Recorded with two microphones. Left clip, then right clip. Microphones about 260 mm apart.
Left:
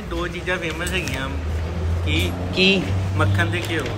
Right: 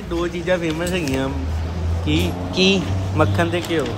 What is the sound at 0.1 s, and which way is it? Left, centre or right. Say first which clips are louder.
A man's voice: right 4 dB; right.